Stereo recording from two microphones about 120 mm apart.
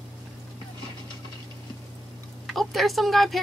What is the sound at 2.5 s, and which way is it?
Speech, centre (ahead or behind).